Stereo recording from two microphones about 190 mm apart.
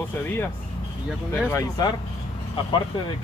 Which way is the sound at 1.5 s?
20° left (ahead or behind).